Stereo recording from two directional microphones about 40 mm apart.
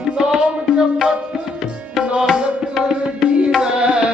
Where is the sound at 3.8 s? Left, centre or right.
Right.